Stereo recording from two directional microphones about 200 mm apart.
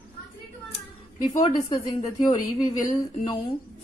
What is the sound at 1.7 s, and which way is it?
A woman's voice, 20° left (ahead or behind).